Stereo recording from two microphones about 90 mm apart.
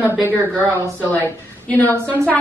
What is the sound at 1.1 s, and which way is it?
Speech, 20° left (ahead or behind).